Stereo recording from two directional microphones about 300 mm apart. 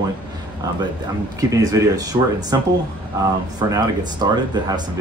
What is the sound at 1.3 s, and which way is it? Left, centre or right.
Speech, centre.